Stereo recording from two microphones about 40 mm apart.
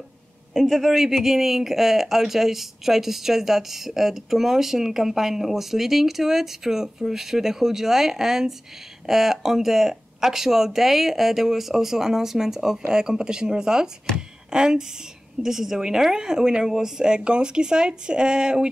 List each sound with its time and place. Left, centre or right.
0.5 s speech: centre; by 18.7 s right